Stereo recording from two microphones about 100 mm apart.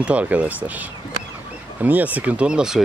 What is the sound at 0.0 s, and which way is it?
Speech, 15° right (ahead or behind).